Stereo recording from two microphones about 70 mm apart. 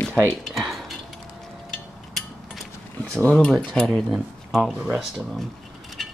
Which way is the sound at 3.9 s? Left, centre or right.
Centre.